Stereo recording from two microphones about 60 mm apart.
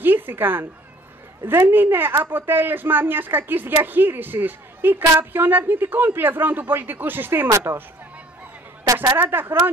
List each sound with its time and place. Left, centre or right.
0.0 s speech: right
7.7 s speech: right
9.1 s speech: right